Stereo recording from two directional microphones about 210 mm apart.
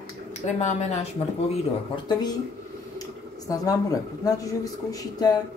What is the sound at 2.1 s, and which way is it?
Speech, 20° left (ahead or behind).